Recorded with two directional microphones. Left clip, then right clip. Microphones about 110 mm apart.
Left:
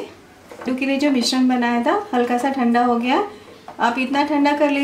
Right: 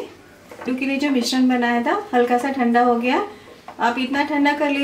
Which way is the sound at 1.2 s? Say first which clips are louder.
Left 1 dB; 5° left (ahead or behind).